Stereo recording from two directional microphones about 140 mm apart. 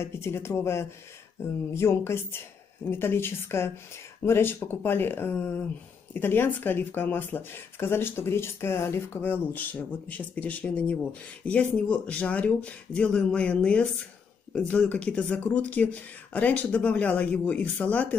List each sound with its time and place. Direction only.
0.0 s speech: 20° left (ahead or behind)